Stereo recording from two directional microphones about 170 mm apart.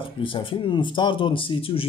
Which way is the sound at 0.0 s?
30° left (ahead or behind).